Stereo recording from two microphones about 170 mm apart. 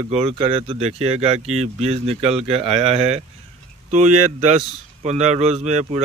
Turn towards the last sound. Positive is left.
turn(degrees=-40)  # may be behind; listen again after turning